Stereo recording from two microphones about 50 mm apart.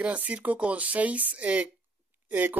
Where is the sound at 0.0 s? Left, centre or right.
Right.